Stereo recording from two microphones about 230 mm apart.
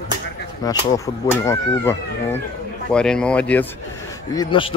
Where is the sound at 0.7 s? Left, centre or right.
Centre.